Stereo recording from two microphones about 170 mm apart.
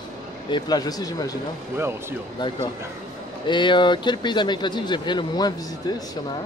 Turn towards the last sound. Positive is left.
turn(degrees=25)  # may be behind; listen again after turning